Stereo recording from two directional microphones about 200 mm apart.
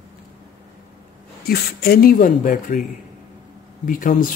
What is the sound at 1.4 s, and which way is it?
Speech, 50° left (ahead or behind).